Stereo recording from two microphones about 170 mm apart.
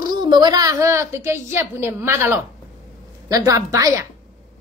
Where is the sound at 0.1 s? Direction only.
25° right (ahead or behind).